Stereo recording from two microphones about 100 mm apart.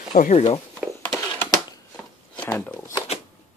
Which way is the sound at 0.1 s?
90° left.